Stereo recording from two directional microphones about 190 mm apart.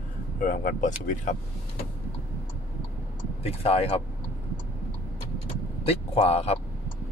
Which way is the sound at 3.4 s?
30° left (ahead or behind).